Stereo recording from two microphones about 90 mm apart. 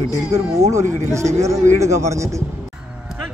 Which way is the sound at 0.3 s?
35° right (ahead or behind).